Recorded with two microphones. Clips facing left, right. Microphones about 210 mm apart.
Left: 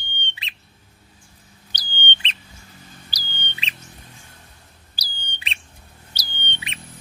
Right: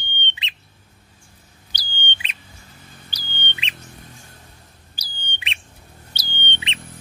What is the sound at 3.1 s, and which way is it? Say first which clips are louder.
Bird: right 1 dB; 35° left (ahead or behind).